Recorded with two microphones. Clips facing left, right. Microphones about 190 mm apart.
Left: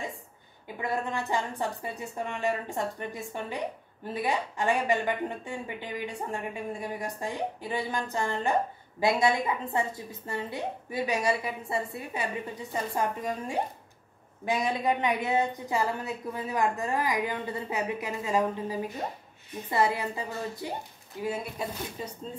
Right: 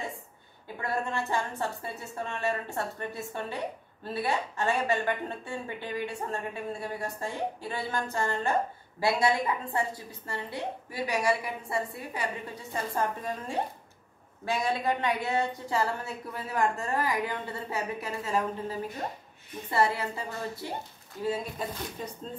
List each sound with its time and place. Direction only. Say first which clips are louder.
0.7 s a woman's voice: left 1 dB; 15° left (ahead or behind)
12.7 s speech: left 1 dB; 15° left (ahead or behind)